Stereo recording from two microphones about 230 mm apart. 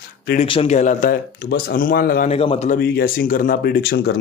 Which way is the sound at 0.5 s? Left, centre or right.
Left.